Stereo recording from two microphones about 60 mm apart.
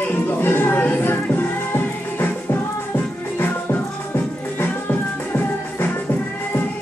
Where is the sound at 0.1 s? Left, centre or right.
Left.